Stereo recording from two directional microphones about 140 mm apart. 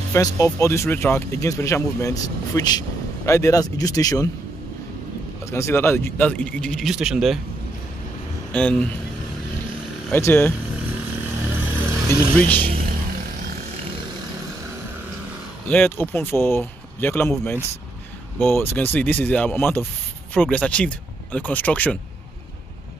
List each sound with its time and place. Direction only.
0.1 s speech: 20° left (ahead or behind)
5.5 s speech: 20° left (ahead or behind); by 7.3 s 5° right (ahead or behind)
8.5 s speech: 10° left (ahead or behind)
10.1 s speech: 15° left (ahead or behind)
12.1 s speech: 10° left (ahead or behind)
15.7 s speech: 15° left (ahead or behind)